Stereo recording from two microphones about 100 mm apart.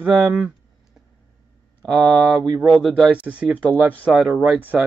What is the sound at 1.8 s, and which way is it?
Speech, 5° left (ahead or behind).